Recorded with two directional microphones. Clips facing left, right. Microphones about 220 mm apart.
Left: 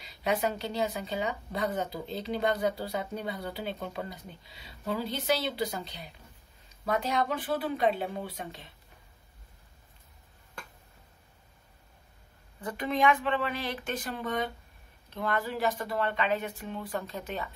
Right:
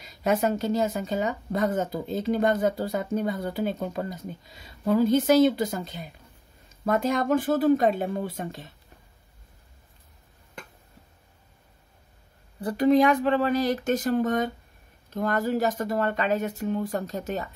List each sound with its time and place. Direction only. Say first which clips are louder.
0.0 s speech: right 5 dB; 45° right (ahead or behind)
12.5 s speech: right 11 dB; 35° right (ahead or behind)